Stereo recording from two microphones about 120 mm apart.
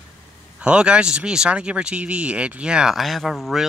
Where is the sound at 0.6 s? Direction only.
10° right (ahead or behind).